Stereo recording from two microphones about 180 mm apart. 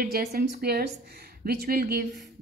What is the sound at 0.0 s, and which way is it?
A woman's voice, 55° right (ahead or behind).